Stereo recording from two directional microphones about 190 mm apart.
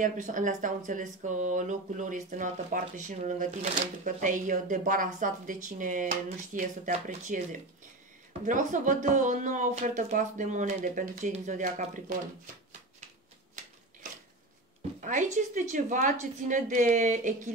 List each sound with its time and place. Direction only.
0.0 s speech: 40° right (ahead or behind)
15.0 s speech: 40° right (ahead or behind)